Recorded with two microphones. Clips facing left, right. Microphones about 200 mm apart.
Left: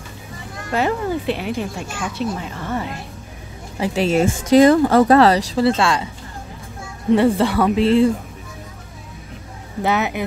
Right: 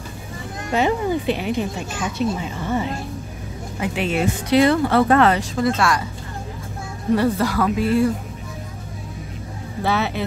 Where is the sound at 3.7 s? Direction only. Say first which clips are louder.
Left 5 dB; 35° left (ahead or behind).